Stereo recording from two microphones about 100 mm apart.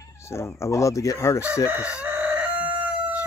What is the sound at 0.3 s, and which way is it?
Speech, 25° left (ahead or behind).